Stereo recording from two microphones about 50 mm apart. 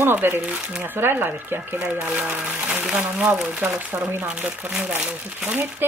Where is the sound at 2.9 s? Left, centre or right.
Right.